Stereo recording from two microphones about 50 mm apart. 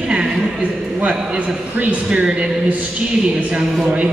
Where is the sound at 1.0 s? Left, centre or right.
Centre.